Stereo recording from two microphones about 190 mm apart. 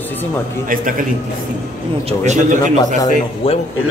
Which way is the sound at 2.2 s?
40° right (ahead or behind).